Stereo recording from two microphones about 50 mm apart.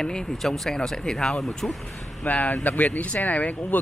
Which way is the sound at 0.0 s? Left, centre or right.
Centre.